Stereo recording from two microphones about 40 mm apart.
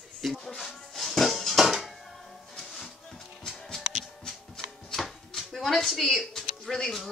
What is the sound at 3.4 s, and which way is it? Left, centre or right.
Music, centre.